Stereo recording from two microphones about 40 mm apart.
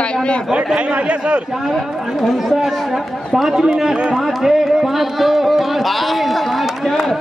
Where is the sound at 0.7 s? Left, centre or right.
Right.